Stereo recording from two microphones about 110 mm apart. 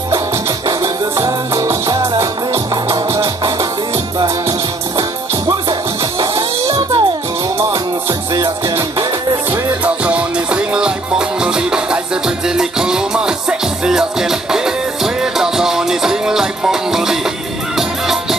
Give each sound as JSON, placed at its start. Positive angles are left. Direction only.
{"t": 1.1, "sound": "music", "side_deg": -30}
{"t": 4.2, "sound": "music", "side_deg": -40}
{"t": 9.5, "sound": "music", "side_deg": -15}